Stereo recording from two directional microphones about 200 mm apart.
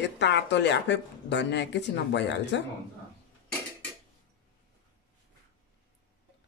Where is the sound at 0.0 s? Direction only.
60° left (ahead or behind).